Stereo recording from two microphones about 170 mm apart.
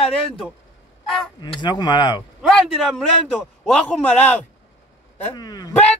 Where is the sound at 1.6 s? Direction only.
25° left (ahead or behind).